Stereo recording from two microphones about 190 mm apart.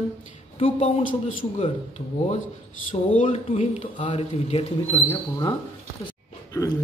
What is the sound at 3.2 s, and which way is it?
Speech, 40° left (ahead or behind).